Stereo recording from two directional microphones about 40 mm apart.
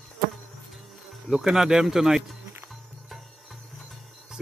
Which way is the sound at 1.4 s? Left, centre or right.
Centre.